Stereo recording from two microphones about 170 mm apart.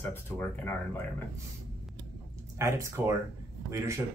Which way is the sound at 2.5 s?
15° right (ahead or behind).